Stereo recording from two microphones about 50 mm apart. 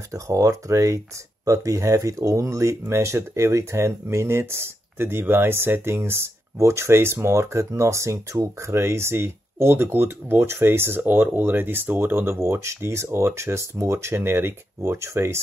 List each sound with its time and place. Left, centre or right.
0.1 s speech: right
2.9 s speech: right
12.4 s speech: right
14.8 s speech: right